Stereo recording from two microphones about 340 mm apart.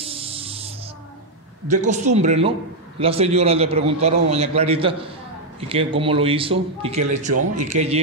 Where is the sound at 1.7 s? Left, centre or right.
Right.